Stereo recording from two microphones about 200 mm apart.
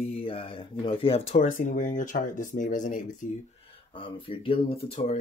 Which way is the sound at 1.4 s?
40° left (ahead or behind).